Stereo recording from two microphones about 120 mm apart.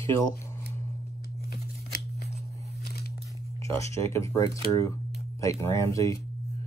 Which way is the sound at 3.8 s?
25° left (ahead or behind).